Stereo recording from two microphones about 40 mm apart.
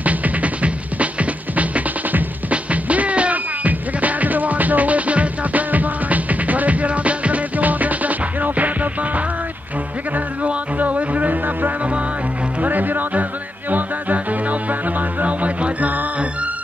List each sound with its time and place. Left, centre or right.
0.0 s music: right